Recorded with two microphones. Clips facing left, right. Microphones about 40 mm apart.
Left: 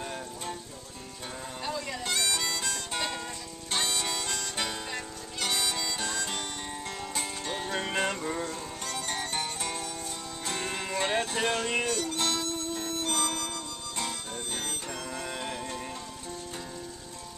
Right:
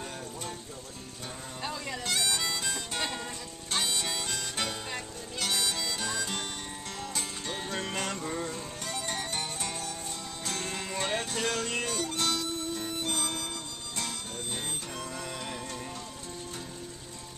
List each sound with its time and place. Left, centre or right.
1.6 s music: centre
2.1 s harmonica: centre
3.0 s music: centre
3.9 s harmonica: centre
7.0 s music: centre
11.8 s music: centre
12.2 s music: centre
12.7 s music: centre